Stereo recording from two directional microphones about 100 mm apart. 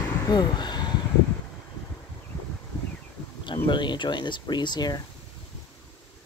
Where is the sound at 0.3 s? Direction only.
45° left (ahead or behind).